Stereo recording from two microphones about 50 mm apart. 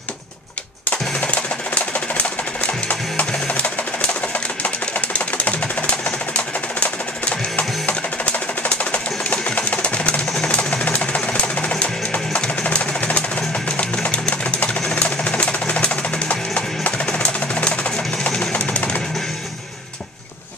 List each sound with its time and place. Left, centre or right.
0.8 s music: left
4.6 s a sound: left
10.5 s music: left
13.7 s a sound: left
15.0 s music: left
18.5 s music: left